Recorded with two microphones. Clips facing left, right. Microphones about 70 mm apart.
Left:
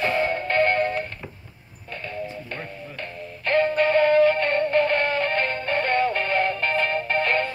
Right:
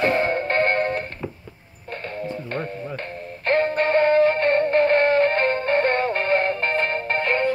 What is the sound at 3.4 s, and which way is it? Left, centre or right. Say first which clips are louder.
Synthetic singing: even; right.